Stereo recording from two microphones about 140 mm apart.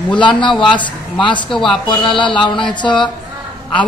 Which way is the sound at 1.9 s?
35° left (ahead or behind).